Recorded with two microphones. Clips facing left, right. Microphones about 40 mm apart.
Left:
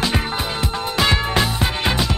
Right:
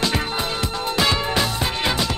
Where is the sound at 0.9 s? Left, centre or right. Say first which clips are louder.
Left 2 dB; centre.